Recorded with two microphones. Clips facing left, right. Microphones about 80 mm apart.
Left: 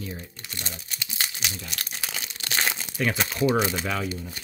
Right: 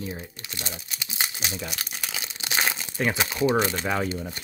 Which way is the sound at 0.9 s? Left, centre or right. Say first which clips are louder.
Right 1 dB; centre.